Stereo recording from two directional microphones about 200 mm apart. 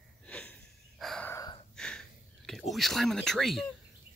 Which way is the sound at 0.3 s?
5° left (ahead or behind).